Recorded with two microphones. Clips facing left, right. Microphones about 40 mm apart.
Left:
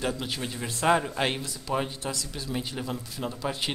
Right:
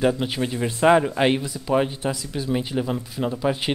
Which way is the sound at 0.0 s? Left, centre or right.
Centre.